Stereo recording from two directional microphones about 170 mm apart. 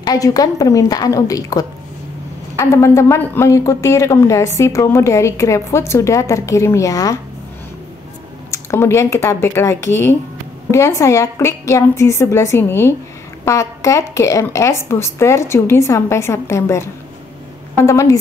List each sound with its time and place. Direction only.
0.0 s a woman's voice: 20° left (ahead or behind)
8.5 s a woman's voice: 15° left (ahead or behind)
17.8 s a woman's voice: 20° left (ahead or behind)